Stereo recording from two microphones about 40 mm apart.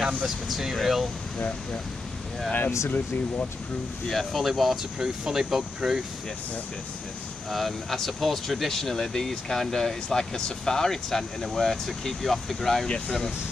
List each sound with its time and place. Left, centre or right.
0.2 s speech: centre
2.5 s speech: left
4.1 s speech: centre
4.9 s speech: centre
7.5 s speech: centre